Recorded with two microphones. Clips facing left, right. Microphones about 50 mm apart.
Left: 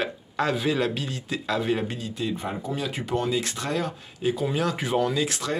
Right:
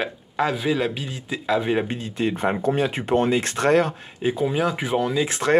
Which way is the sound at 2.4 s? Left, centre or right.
Right.